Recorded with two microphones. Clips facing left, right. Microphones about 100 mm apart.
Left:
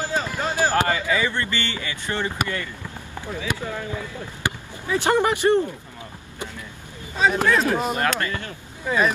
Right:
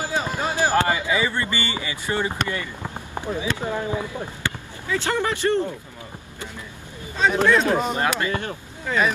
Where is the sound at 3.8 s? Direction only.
25° right (ahead or behind).